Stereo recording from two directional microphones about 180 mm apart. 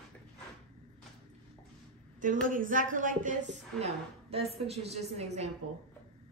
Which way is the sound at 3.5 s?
35° right (ahead or behind).